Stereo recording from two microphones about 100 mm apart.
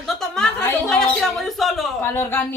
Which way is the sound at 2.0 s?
25° left (ahead or behind).